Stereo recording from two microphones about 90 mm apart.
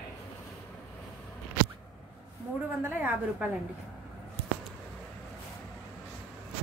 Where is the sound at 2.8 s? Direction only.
20° right (ahead or behind).